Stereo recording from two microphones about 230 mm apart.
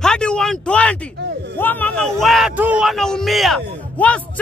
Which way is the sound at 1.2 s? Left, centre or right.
Right.